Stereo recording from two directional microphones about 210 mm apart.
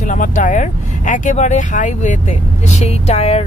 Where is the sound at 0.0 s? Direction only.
35° left (ahead or behind).